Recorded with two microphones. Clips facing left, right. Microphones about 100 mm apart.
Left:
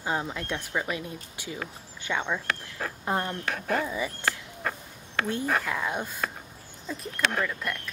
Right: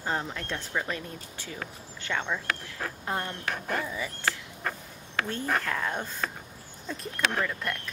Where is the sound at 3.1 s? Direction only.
20° left (ahead or behind).